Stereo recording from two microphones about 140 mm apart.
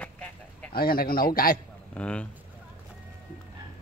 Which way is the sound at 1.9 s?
10° left (ahead or behind).